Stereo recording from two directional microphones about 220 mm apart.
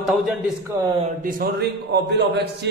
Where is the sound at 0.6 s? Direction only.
15° right (ahead or behind).